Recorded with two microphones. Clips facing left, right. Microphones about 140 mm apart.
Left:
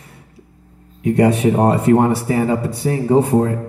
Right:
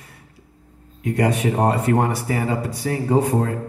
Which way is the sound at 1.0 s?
25° left (ahead or behind).